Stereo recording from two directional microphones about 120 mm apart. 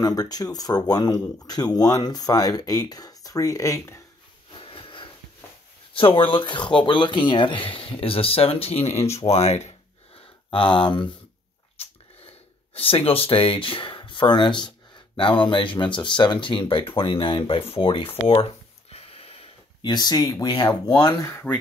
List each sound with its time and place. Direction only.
0.0 s speech: 30° left (ahead or behind)
4.6 s a sound: 45° left (ahead or behind)
5.9 s speech: 45° left (ahead or behind); by 9.8 s 65° left (ahead or behind)
10.5 s speech: 45° left (ahead or behind)
12.7 s speech: 50° left (ahead or behind)
19.8 s speech: 35° left (ahead or behind); by 21.5 s 20° left (ahead or behind)